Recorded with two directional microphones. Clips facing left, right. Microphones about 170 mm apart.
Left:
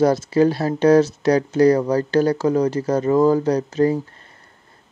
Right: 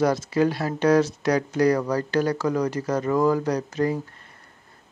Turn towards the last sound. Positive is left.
turn(degrees=30)  # may be behind; listen again after turning